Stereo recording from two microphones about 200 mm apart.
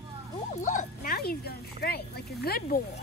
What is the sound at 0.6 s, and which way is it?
Speech, 40° left (ahead or behind).